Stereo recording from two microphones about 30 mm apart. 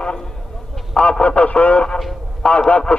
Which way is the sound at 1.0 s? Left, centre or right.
Left.